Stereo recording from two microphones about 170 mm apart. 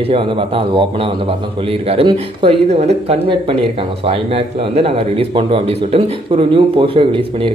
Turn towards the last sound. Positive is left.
turn(degrees=-30)  # may be behind; listen again after turning